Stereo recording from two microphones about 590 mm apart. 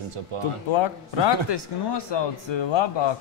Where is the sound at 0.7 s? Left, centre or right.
Left.